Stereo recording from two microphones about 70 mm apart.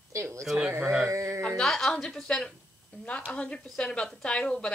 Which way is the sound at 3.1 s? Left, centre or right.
Left.